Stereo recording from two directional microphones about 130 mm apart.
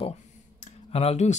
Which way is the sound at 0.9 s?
55° left (ahead or behind).